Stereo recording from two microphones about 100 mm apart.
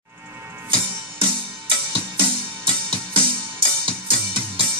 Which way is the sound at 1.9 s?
60° right (ahead or behind).